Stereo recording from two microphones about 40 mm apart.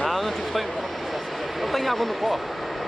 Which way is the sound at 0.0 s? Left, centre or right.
Centre.